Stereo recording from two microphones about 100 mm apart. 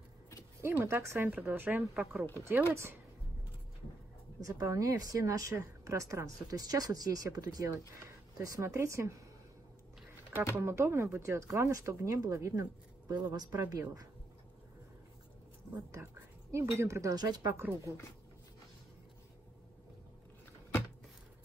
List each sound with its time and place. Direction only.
0.6 s speech: 25° right (ahead or behind)
4.4 s speech: 35° right (ahead or behind)
10.5 s speech: 25° right (ahead or behind)
13.1 s speech: 40° right (ahead or behind)
15.7 s speech: 30° right (ahead or behind)
17.6 s speech: 25° right (ahead or behind)